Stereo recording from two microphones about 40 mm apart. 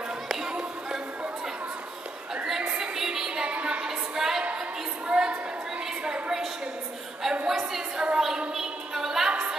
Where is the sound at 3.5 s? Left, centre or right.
Right.